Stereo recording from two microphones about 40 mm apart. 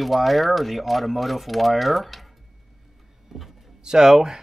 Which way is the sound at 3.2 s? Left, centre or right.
Centre.